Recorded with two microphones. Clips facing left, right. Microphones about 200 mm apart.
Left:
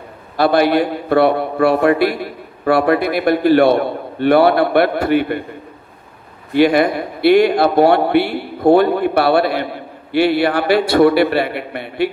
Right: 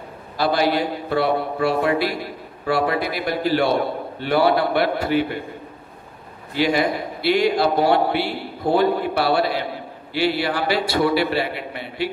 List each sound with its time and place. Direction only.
0.4 s a man's voice: 60° left (ahead or behind)
6.5 s a man's voice: 60° left (ahead or behind)